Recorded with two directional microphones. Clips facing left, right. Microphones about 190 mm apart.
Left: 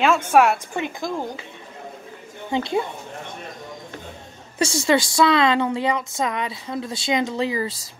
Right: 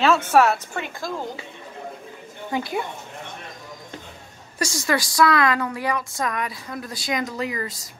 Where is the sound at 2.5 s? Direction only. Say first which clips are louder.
Left 4 dB; 25° left (ahead or behind).